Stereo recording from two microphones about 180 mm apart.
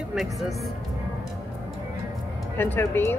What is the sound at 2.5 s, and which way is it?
Speech, 10° left (ahead or behind).